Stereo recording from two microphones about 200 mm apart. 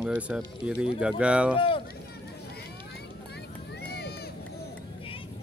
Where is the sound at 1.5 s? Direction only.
25° left (ahead or behind).